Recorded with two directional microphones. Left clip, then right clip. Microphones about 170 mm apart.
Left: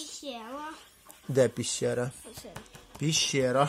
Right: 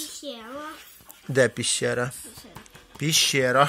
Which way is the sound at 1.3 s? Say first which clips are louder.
Right 4 dB; 10° left (ahead or behind).